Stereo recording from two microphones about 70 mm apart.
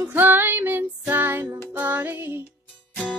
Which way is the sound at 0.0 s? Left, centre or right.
Right.